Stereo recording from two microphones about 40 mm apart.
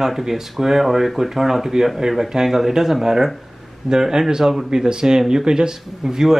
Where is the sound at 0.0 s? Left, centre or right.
Centre.